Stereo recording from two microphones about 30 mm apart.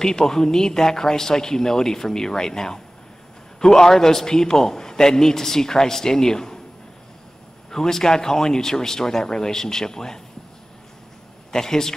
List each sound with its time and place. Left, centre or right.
0.0 s a man's voice: centre
7.7 s speech: centre
11.5 s a man's voice: centre